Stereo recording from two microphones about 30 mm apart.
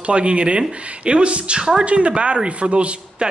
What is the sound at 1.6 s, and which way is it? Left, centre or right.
Speech, right.